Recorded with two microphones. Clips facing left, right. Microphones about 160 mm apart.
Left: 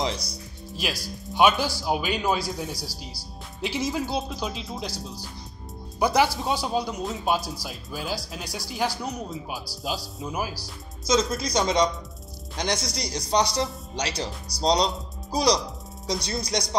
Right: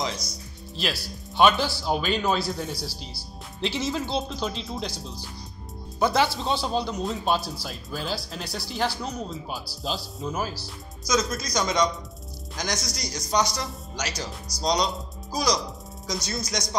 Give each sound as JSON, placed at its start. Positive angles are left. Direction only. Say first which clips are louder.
{"t": 0.0, "sound": "speech", "louder": "left 2 dB", "side_deg": 30}
{"t": 0.7, "sound": "speech", "louder": "right 1 dB", "side_deg": 10}
{"t": 11.1, "sound": "speech", "louder": "left 2 dB", "side_deg": 30}